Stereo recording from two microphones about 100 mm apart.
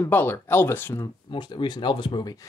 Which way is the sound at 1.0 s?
45° left (ahead or behind).